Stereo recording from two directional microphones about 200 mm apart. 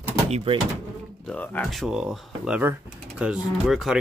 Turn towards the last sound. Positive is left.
turn(degrees=0)  # may be behind; listen again after turning